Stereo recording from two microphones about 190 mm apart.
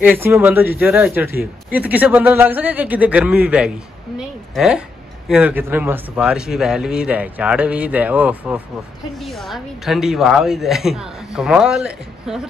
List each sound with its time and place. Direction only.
0.0 s a man's voice: 10° right (ahead or behind)